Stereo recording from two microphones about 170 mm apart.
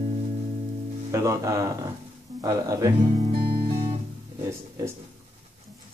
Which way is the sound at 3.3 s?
35° right (ahead or behind).